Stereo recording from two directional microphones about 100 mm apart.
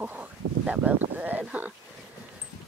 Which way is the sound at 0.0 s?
15° right (ahead or behind).